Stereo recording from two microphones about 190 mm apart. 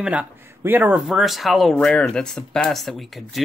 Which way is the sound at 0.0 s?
10° right (ahead or behind).